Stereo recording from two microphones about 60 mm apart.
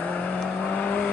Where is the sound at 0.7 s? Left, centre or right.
Left.